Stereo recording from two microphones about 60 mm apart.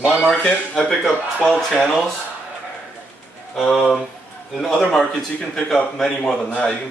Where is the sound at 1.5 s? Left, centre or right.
Centre.